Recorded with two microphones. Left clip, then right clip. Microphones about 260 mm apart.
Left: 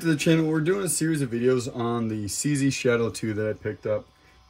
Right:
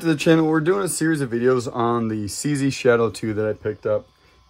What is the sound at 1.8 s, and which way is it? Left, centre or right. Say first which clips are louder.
Speech: right 7 dB; centre.